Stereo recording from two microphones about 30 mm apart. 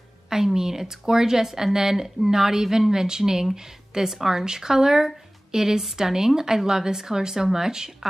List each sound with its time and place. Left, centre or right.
0.3 s a woman's voice: centre